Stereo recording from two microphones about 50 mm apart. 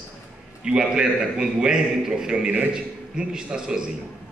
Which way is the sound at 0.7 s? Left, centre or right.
Centre.